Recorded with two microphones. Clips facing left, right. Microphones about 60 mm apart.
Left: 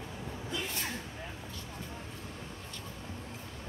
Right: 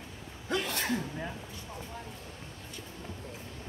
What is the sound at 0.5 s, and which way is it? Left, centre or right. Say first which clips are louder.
Sneeze: right 7 dB; right.